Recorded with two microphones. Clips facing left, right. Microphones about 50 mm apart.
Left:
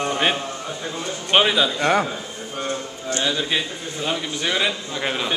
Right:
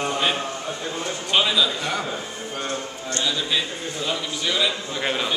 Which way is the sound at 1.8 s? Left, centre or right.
Left.